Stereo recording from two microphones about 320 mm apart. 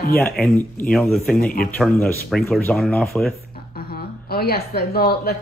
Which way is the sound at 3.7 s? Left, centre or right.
Left.